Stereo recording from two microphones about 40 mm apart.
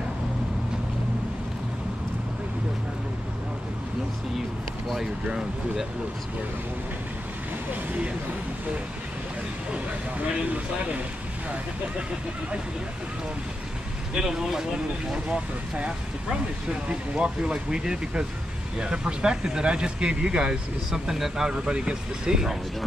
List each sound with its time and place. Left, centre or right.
4.9 s speech: centre
10.1 s speech: right
14.1 s speech: centre
15.1 s speech: right
21.6 s speech: right
22.2 s speech: centre